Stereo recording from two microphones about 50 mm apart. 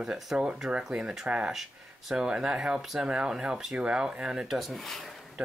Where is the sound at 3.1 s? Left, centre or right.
Centre.